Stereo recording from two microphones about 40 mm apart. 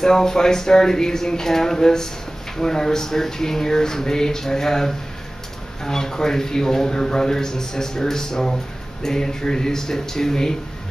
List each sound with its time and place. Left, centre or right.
0.0 s a man's voice: centre